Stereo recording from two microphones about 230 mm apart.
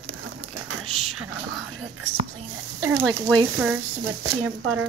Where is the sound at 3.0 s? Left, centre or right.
Centre.